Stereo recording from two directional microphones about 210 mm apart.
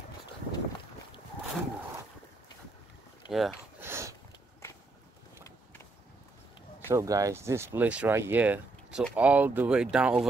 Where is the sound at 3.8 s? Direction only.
10° right (ahead or behind).